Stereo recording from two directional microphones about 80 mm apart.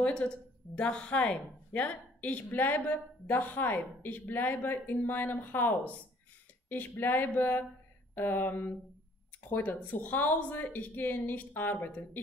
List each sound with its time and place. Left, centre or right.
0.0 s a woman's voice: centre